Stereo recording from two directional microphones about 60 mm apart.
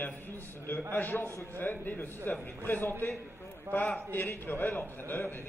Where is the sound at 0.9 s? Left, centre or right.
Left.